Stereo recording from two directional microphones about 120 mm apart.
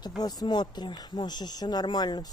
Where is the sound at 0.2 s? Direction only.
35° left (ahead or behind).